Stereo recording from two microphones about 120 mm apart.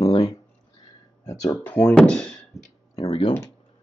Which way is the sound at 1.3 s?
25° left (ahead or behind).